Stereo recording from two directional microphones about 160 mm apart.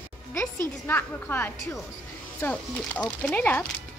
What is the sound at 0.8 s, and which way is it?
Speech, 10° left (ahead or behind).